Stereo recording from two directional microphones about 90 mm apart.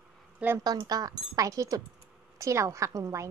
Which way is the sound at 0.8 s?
45° right (ahead or behind).